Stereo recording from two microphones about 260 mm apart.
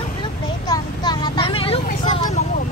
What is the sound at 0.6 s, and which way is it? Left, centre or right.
Vehicle, centre.